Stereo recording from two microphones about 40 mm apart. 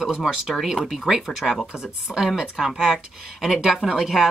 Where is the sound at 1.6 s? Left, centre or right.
Right.